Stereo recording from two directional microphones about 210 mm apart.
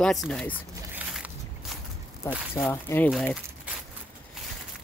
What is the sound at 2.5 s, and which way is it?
Speech, 10° left (ahead or behind).